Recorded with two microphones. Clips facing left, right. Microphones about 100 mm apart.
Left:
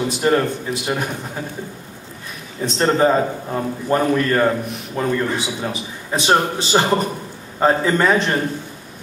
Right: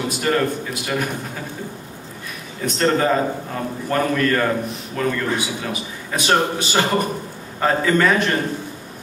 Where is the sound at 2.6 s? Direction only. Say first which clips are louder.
Left 2 dB; 20° left (ahead or behind).